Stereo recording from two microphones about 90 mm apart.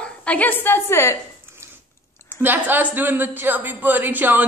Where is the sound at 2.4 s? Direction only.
20° right (ahead or behind).